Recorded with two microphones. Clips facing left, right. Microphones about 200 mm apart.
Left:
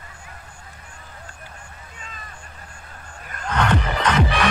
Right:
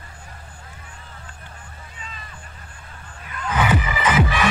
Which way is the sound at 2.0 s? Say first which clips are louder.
Right 1 dB; 45° left (ahead or behind).